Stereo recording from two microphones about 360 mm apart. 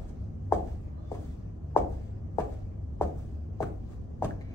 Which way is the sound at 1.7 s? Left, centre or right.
Centre.